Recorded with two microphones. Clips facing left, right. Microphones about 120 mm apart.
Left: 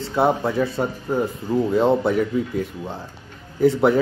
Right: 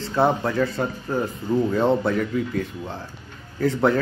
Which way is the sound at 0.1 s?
10° left (ahead or behind).